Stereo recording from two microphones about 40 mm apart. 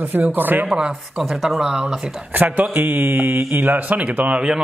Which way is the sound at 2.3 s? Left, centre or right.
Right.